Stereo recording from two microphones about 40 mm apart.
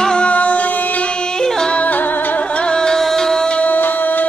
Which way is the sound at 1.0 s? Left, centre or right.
Left.